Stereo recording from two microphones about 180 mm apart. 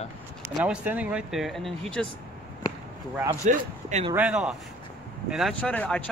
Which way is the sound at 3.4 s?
40° right (ahead or behind).